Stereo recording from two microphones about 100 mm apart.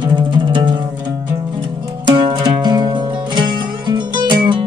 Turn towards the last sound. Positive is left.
turn(degrees=-50)  # may be behind; listen again after turning